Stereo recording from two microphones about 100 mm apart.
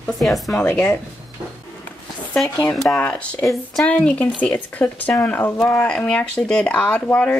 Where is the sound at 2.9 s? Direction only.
15° left (ahead or behind).